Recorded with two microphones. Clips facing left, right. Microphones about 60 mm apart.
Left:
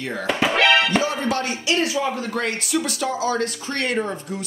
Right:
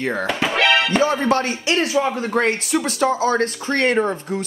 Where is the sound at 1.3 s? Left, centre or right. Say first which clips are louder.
Right 4 dB; right.